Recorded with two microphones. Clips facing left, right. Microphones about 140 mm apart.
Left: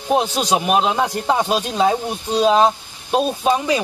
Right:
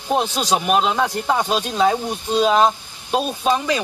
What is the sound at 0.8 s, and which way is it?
Speech, 20° left (ahead or behind).